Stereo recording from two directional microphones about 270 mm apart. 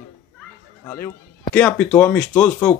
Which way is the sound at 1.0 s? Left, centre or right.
Centre.